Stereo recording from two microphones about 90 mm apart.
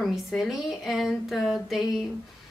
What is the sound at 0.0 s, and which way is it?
A woman's voice, centre (ahead or behind).